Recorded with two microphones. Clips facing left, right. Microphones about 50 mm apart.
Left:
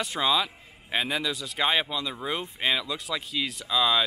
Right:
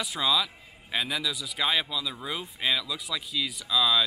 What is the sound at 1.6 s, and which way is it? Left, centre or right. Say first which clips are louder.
Speech: left 2 dB; left.